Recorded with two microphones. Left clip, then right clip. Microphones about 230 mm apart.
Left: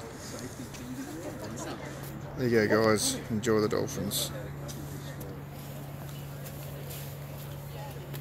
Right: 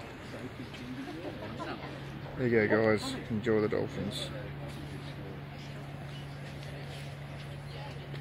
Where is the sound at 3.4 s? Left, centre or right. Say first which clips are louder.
Left 2 dB; centre.